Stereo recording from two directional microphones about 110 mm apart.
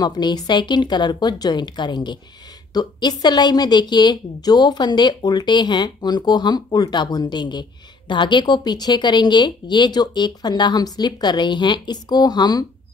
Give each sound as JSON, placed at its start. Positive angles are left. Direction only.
{"t": 0.0, "sound": "a woman's voice", "side_deg": 40}